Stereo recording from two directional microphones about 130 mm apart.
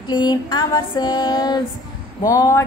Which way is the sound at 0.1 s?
35° left (ahead or behind).